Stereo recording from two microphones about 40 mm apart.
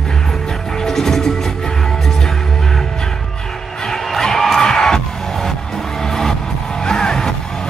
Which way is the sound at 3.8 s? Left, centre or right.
Centre.